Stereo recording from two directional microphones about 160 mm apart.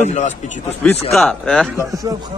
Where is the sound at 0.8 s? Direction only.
5° left (ahead or behind).